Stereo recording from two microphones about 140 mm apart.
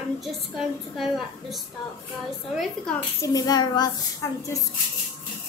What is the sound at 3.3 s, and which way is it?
Speech, 30° left (ahead or behind).